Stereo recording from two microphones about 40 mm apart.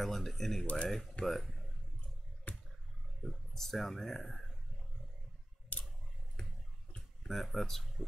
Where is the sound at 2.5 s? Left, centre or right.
Left.